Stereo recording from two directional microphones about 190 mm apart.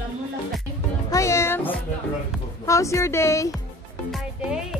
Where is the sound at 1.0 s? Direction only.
15° left (ahead or behind).